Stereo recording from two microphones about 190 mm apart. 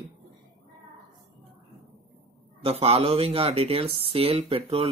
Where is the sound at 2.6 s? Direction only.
35° right (ahead or behind).